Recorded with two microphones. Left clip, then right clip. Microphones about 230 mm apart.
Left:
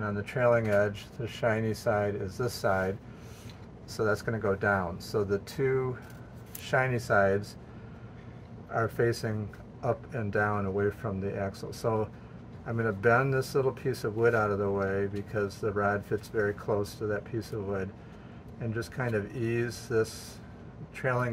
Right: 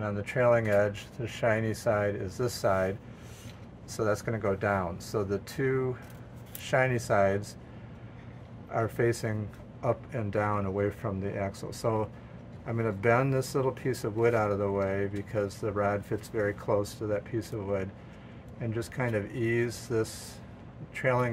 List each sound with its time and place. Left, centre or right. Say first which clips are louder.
0.0 s speech: right 1 dB; right
8.7 s speech: even; centre